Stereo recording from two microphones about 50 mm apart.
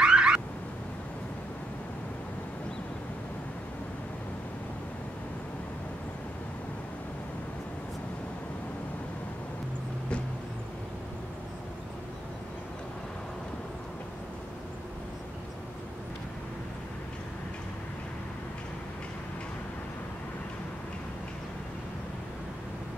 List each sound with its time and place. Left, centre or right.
0.0 s car alarm: centre